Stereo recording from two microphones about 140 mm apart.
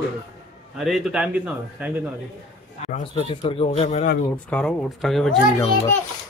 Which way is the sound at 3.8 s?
60° left (ahead or behind).